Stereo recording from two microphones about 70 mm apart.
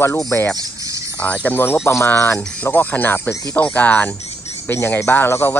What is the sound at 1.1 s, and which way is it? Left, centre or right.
Speech, centre.